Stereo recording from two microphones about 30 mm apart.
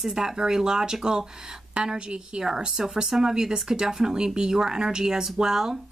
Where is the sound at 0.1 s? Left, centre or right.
Centre.